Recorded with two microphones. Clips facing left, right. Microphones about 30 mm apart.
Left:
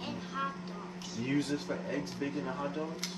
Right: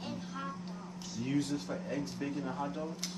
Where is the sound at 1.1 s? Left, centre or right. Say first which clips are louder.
Left 1 dB; left.